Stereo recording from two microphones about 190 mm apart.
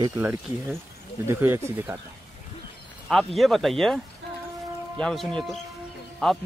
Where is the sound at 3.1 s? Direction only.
Centre (ahead or behind).